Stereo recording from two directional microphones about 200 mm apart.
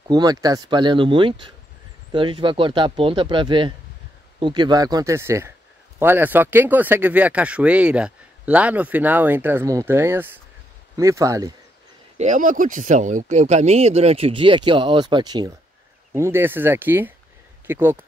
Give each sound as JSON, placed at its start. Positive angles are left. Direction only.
{"t": 0.1, "sound": "speech", "side_deg": -20}
{"t": 12.2, "sound": "speech", "side_deg": -40}